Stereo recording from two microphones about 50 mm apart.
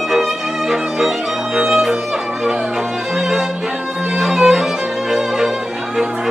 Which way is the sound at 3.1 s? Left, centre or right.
Centre.